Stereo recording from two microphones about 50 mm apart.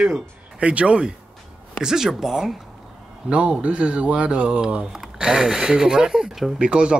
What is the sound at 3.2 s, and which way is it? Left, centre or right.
Speech, right.